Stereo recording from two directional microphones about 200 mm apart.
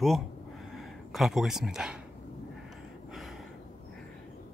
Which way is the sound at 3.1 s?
Centre (ahead or behind).